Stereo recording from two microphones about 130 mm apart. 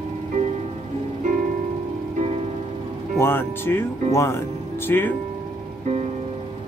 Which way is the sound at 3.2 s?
15° left (ahead or behind).